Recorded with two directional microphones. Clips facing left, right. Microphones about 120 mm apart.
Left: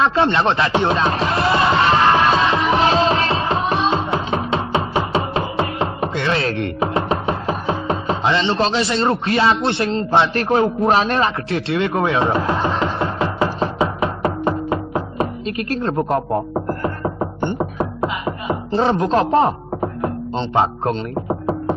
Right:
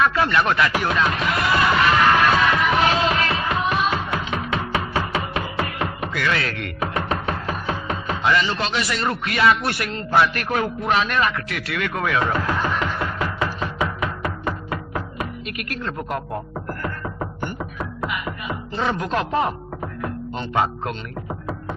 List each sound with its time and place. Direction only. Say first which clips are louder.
0.0 s music: left 3 dB; 25° left (ahead or behind)